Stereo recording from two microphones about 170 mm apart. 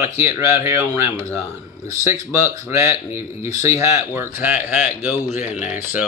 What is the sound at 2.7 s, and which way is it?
Speech, 15° right (ahead or behind).